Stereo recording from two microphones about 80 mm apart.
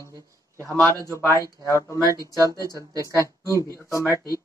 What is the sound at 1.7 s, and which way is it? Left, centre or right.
Speech, left.